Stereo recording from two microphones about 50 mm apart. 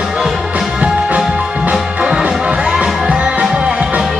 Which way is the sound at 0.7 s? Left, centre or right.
Right.